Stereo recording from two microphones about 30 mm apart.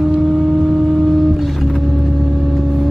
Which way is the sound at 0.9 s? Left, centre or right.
Left.